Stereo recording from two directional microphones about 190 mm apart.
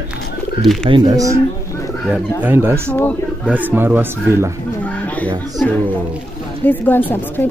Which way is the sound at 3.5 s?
10° right (ahead or behind).